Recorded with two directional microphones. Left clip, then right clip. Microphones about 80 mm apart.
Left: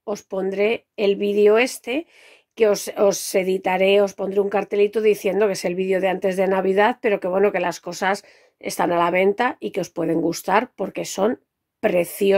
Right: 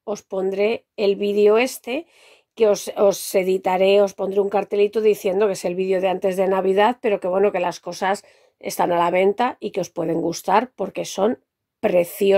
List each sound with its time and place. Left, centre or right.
0.0 s a woman's voice: right